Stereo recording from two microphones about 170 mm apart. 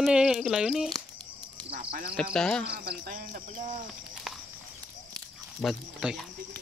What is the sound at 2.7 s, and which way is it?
Speech, 65° right (ahead or behind).